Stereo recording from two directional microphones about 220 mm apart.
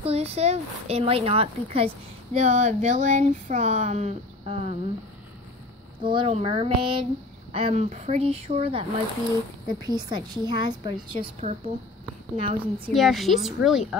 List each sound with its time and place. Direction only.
0.0 s speech: 30° right (ahead or behind)
6.0 s speech: 25° right (ahead or behind)
9.8 s speech: 20° right (ahead or behind)
12.9 s a woman's voice: centre (ahead or behind)